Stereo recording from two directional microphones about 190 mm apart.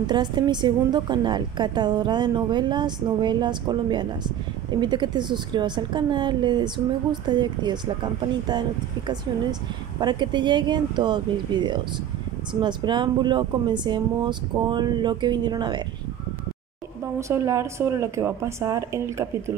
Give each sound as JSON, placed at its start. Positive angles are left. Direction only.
{"t": 0.0, "sound": "a woman's voice", "side_deg": -20}
{"t": 17.0, "sound": "speech", "side_deg": -15}